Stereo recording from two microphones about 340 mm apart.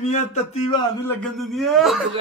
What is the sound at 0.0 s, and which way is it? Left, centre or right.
Speech, centre.